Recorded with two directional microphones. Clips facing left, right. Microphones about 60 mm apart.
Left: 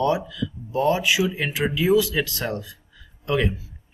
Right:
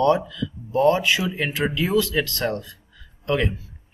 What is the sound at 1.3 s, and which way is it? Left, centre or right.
Speech, centre.